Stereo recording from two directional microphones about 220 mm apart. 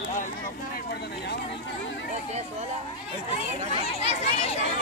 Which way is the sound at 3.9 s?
25° left (ahead or behind).